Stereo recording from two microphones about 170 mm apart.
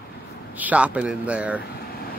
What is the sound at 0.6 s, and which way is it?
Speech, 10° right (ahead or behind).